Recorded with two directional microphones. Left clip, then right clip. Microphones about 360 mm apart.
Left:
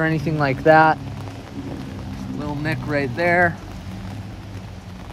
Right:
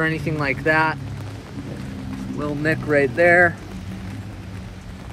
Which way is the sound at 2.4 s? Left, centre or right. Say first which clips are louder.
Right 4 dB; centre.